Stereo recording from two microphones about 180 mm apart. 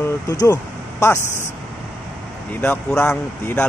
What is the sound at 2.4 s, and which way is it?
Speech, 10° left (ahead or behind).